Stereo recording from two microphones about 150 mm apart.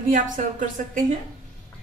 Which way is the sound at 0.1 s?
60° right (ahead or behind).